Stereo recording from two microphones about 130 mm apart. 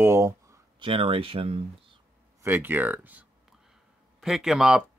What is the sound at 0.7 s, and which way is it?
Speech, 45° right (ahead or behind).